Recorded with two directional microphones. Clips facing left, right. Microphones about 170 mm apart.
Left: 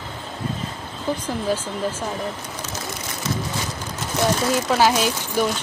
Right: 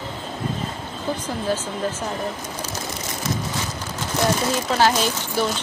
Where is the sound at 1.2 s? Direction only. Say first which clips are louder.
Left 1 dB; 10° left (ahead or behind).